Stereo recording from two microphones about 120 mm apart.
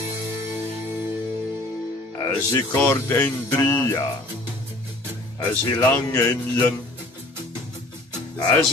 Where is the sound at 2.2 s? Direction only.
20° left (ahead or behind).